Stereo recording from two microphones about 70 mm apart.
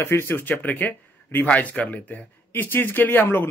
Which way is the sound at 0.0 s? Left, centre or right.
Left.